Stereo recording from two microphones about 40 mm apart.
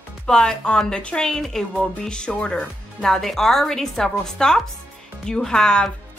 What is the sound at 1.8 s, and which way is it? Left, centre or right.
Speech, left.